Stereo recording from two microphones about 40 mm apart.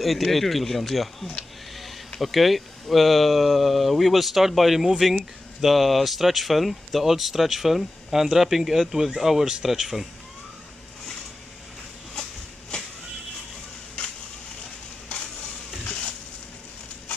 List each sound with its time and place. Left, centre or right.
0.0 s speech: centre